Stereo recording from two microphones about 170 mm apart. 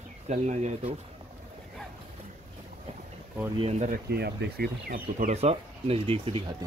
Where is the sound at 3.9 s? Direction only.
70° right (ahead or behind).